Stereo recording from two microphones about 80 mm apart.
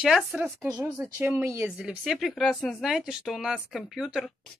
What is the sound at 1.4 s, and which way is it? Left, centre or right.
Speech, right.